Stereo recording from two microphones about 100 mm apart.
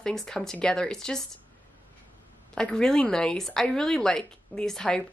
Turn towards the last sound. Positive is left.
turn(degrees=10)  # may be behind; listen again after turning